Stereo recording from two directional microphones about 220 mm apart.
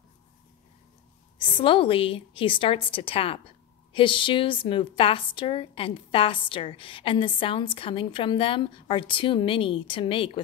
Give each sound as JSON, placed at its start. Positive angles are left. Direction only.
{"t": 1.6, "sound": "a woman's voice", "side_deg": 25}